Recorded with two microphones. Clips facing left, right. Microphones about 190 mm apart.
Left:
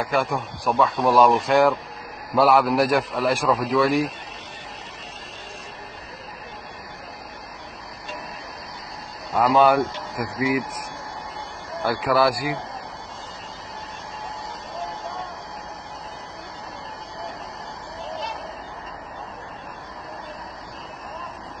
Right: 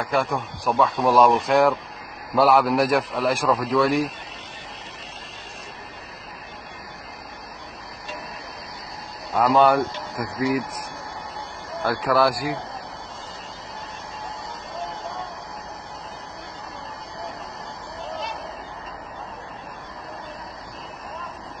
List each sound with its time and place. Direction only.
0.0 s a man's voice: centre (ahead or behind)
9.3 s a man's voice: centre (ahead or behind)
11.8 s a man's voice: centre (ahead or behind)